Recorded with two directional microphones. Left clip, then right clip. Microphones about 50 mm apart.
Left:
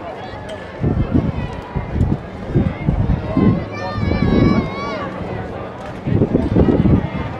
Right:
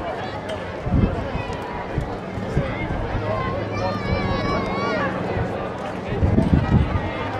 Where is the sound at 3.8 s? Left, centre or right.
Left.